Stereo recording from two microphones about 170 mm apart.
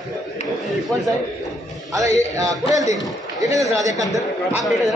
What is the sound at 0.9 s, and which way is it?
Speech, centre (ahead or behind).